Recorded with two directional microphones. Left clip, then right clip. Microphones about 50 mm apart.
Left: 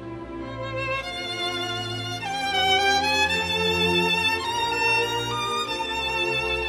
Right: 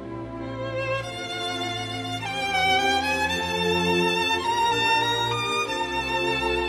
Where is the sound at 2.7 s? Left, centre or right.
Left.